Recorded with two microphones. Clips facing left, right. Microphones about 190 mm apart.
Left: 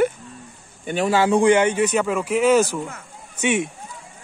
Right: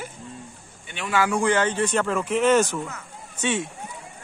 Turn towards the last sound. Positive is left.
turn(degrees=15)  # may be behind; listen again after turning